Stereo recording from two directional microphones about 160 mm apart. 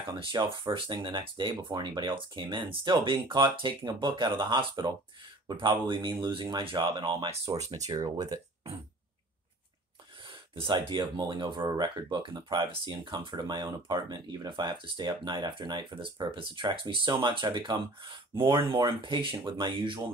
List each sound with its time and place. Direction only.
0.1 s speech: 30° right (ahead or behind)
10.5 s speech: 30° right (ahead or behind)